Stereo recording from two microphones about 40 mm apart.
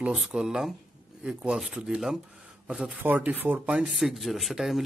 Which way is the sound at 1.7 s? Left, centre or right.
Right.